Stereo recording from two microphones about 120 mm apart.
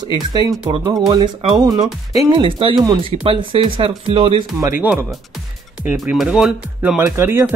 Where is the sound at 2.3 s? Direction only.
45° right (ahead or behind).